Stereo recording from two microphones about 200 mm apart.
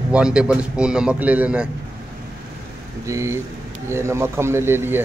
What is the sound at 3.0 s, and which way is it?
Speech, 15° right (ahead or behind).